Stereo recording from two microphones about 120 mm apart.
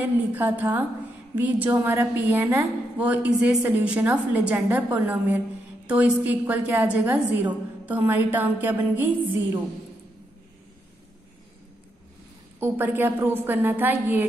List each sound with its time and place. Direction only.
0.3 s a woman's voice: 15° right (ahead or behind)
12.5 s a woman's voice: 20° right (ahead or behind)